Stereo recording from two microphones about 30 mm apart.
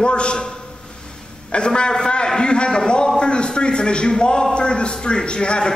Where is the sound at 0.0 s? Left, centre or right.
Left.